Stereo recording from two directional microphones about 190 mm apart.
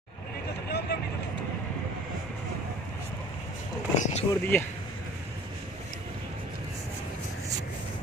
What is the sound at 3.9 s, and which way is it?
Vehicle, 40° left (ahead or behind).